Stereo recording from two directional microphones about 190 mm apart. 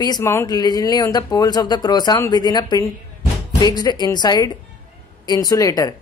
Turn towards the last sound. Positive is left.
turn(degrees=20)  # may be behind; listen again after turning